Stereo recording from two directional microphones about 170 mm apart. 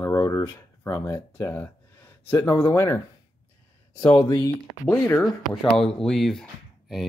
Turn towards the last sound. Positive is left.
turn(degrees=0)  # may be behind; listen again after turning